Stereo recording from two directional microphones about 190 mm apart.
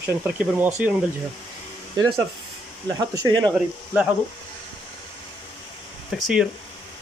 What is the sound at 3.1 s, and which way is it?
Speech, 20° right (ahead or behind).